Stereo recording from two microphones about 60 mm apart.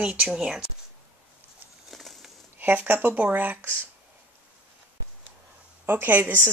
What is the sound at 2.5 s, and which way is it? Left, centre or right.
Speech, right.